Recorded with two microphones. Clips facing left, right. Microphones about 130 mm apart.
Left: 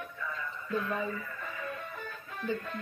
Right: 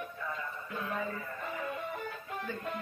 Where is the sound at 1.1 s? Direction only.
15° right (ahead or behind).